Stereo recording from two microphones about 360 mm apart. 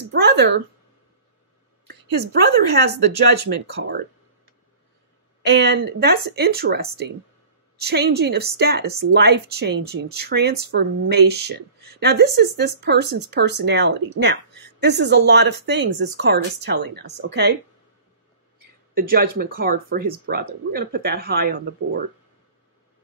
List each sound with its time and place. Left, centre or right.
0.1 s a sound: right
3.4 s a woman's voice: right
5.4 s a woman's voice: right
18.9 s a woman's voice: right